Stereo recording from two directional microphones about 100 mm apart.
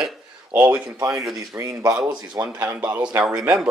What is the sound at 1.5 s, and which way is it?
Speech, 30° right (ahead or behind).